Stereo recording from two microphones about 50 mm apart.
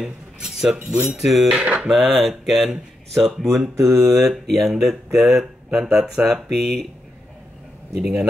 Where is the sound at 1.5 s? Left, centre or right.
Right.